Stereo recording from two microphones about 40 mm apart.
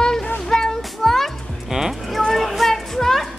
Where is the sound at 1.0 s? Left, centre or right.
Centre.